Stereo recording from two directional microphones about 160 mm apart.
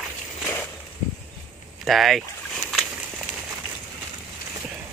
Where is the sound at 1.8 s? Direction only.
Centre (ahead or behind).